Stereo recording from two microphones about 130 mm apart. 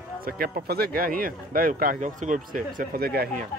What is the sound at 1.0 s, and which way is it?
Speech, 90° right.